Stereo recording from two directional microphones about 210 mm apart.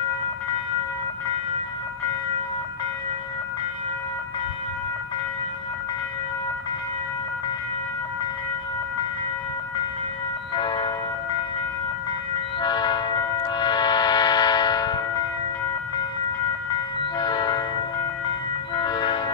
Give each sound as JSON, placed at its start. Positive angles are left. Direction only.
{"t": 10.5, "sound": "train", "side_deg": 20}
{"t": 12.5, "sound": "music", "side_deg": 20}
{"t": 17.2, "sound": "train", "side_deg": 20}
{"t": 18.8, "sound": "train", "side_deg": 20}